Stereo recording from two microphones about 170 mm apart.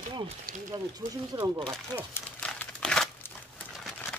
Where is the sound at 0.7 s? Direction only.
25° right (ahead or behind).